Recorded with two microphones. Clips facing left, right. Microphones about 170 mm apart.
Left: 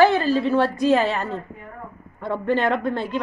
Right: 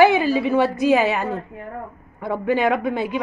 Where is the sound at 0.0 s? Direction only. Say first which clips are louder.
Right 2 dB; 15° right (ahead or behind).